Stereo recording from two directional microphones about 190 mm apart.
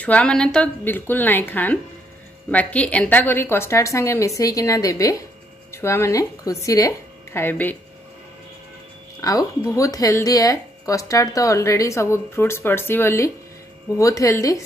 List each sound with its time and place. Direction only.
0.0 s a woman's voice: 5° left (ahead or behind)
9.2 s a woman's voice: 20° left (ahead or behind)